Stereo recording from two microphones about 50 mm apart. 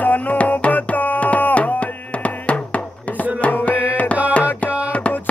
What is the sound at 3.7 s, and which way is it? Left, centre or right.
Tabla, right.